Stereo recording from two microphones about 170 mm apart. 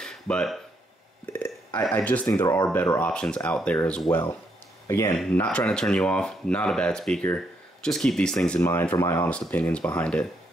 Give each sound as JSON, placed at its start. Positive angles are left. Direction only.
{"t": 0.0, "sound": "a sound", "side_deg": 5}
{"t": 1.2, "sound": "speech", "side_deg": 10}
{"t": 5.1, "sound": "speech", "side_deg": 5}